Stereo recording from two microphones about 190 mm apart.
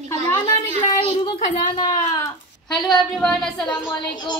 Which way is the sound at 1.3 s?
25° left (ahead or behind).